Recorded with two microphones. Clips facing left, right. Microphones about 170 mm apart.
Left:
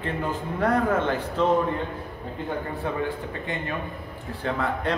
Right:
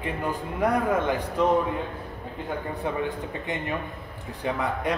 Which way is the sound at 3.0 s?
20° right (ahead or behind).